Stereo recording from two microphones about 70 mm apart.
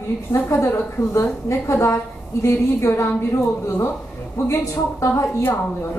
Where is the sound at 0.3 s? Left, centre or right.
Left.